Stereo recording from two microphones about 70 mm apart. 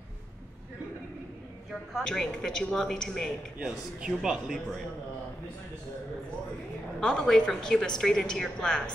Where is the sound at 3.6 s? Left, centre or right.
Centre.